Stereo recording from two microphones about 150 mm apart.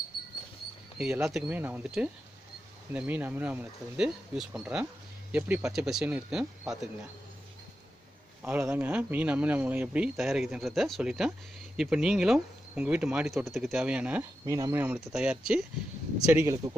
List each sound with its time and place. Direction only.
0.9 s speech: 5° right (ahead or behind)
8.4 s speech: 10° right (ahead or behind)
14.4 s speech: 20° right (ahead or behind)
15.0 s speech: 5° right (ahead or behind)
16.3 s speech: 20° right (ahead or behind)